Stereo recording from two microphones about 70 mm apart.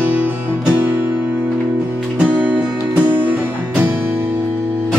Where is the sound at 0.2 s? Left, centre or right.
Centre.